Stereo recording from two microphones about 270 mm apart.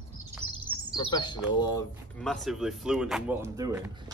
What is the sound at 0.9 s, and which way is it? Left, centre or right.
Speech, centre.